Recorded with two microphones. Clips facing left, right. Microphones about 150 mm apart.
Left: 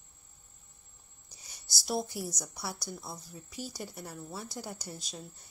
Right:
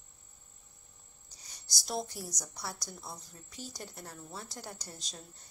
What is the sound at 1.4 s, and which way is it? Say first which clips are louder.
A woman's voice: left 1 dB; 5° left (ahead or behind).